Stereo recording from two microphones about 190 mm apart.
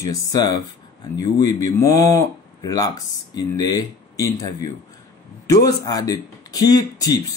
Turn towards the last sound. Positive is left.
turn(degrees=20)  # may be behind; listen again after turning